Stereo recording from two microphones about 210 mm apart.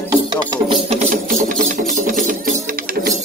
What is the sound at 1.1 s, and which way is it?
Music, 40° right (ahead or behind).